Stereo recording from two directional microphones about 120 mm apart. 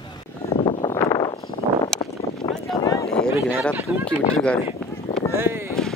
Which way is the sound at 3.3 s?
20° right (ahead or behind).